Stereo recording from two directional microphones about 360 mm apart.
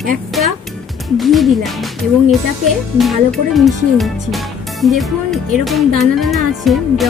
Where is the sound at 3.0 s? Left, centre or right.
Centre.